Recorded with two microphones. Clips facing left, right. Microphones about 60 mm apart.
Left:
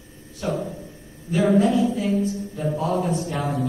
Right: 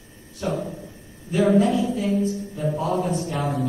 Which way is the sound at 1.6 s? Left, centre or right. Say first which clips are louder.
Left 1 dB; left.